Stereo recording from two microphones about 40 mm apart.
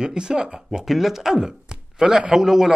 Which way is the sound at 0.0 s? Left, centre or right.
Right.